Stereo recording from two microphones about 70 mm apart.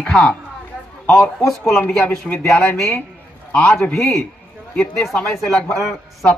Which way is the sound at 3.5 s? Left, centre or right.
Centre.